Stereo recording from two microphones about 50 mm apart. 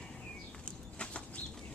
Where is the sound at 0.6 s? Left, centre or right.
Centre.